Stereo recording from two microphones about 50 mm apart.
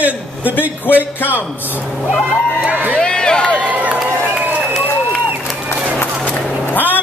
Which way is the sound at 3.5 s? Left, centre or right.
Right.